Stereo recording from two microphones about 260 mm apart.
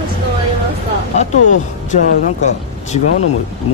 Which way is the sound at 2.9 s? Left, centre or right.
Left.